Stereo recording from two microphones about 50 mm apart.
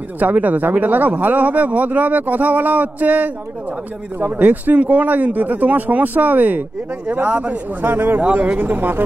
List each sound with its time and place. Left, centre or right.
0.2 s speech: right
4.3 s a man's voice: right
7.8 s a man's voice: right
8.2 s a man's voice: right
8.5 s speech: right